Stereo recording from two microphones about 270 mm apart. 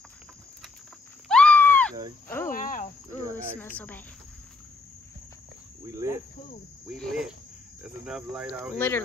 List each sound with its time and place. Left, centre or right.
1.3 s a sound: centre
2.2 s cricket: centre
2.5 s cricket: left
3.1 s cricket: centre
6.9 s speech: centre
8.7 s speech: centre